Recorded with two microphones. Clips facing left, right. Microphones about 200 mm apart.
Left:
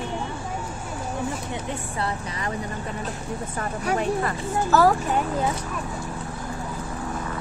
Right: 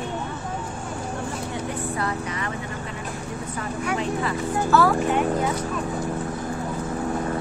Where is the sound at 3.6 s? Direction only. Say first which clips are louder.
Left 1 dB; 50° left (ahead or behind).